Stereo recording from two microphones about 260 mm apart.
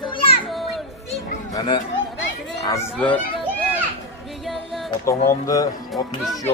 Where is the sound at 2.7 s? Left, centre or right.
Centre.